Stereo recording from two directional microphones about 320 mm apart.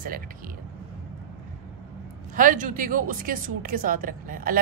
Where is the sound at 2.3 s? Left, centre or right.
Right.